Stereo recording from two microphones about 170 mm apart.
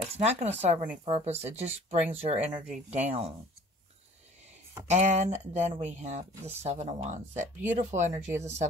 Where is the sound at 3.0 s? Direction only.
40° right (ahead or behind).